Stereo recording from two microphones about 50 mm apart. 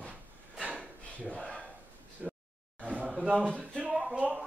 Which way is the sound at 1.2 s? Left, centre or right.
Centre.